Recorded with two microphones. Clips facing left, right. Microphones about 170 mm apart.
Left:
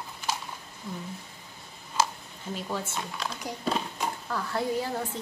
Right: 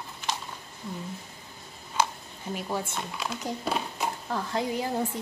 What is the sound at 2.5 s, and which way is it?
Speech, 10° right (ahead or behind).